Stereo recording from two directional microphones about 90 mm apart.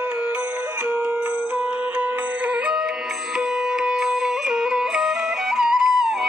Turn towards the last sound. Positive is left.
turn(degrees=-5)  # may be behind; listen again after turning